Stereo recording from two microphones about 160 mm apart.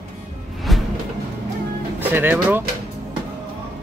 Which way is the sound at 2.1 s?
15° right (ahead or behind).